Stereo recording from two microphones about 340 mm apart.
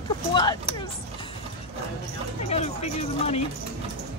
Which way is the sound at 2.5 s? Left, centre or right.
Centre.